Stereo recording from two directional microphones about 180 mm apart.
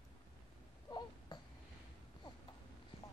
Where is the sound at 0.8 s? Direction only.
25° left (ahead or behind).